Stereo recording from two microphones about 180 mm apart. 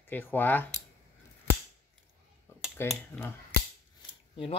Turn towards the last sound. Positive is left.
turn(degrees=30)  # may be behind; listen again after turning